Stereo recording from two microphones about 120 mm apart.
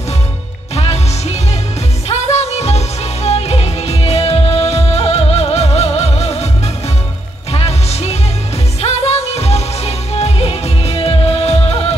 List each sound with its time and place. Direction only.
0.7 s music: 60° left (ahead or behind)
7.5 s music: 60° left (ahead or behind)